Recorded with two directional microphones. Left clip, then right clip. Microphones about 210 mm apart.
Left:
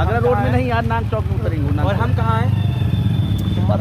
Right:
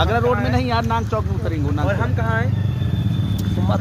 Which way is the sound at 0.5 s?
50° right (ahead or behind).